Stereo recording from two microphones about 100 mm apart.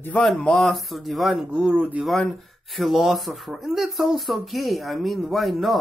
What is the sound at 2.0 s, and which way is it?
Speech, centre (ahead or behind).